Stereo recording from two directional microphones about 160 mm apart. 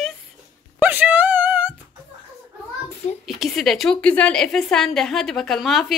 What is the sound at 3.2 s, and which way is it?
A woman's voice, centre (ahead or behind).